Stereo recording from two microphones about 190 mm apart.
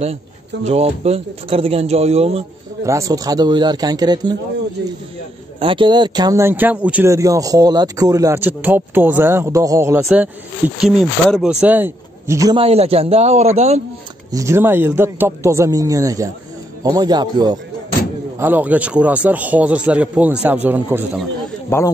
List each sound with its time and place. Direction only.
0.7 s speech: 35° right (ahead or behind)
2.8 s a man's voice: 15° right (ahead or behind)
5.6 s speech: 25° right (ahead or behind)
12.6 s speech: 30° right (ahead or behind)
14.3 s a man's voice: 15° right (ahead or behind)
18.4 s speech: 10° right (ahead or behind)
21.6 s speech: 15° left (ahead or behind)